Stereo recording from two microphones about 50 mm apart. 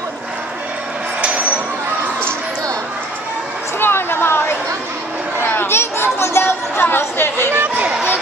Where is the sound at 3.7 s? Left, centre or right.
Left.